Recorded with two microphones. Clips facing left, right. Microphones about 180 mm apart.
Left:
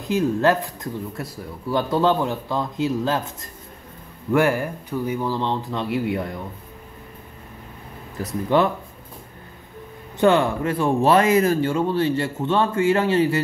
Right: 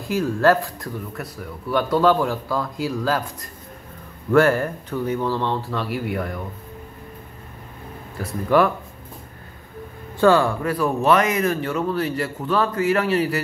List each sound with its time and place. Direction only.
0.0 s speech: 20° left (ahead or behind)
4.3 s speech: 15° left (ahead or behind)
8.5 s speech: 25° left (ahead or behind)
10.2 s speech: 20° left (ahead or behind)